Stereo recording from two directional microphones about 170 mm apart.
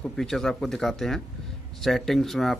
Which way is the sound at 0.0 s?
Centre (ahead or behind).